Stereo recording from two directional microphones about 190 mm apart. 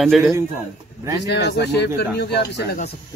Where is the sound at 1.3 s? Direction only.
60° left (ahead or behind).